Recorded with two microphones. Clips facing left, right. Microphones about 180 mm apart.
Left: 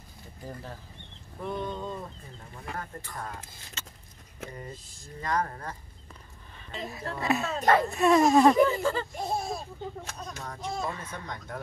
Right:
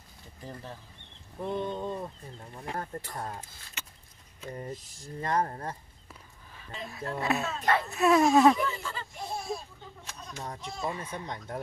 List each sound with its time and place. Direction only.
1.4 s speech: 20° right (ahead or behind)
3.8 s a sound: 15° right (ahead or behind)
5.0 s speech: 30° right (ahead or behind)
7.2 s speech: centre (ahead or behind)
7.5 s speech: 45° left (ahead or behind)
7.9 s speech: centre (ahead or behind)
8.8 s speech: 40° left (ahead or behind)
10.4 s speech: 20° right (ahead or behind)